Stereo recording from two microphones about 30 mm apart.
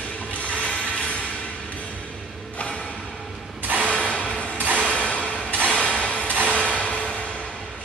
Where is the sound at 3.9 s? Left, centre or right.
Left.